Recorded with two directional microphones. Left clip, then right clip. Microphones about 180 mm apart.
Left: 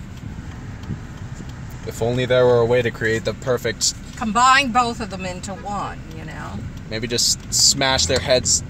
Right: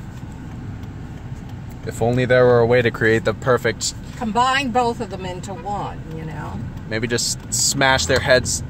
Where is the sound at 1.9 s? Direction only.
5° right (ahead or behind).